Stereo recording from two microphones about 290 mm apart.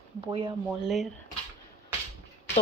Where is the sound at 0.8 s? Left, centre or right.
Centre.